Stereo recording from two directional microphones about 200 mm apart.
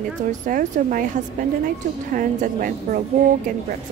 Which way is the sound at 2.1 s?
45° right (ahead or behind).